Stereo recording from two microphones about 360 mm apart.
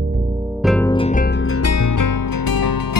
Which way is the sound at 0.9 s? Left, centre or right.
Centre.